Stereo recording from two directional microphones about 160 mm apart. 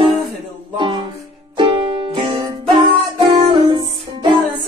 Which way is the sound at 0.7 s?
30° right (ahead or behind).